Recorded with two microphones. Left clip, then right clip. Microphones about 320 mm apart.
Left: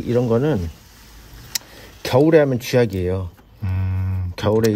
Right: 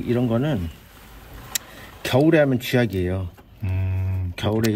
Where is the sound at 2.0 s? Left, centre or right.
Centre.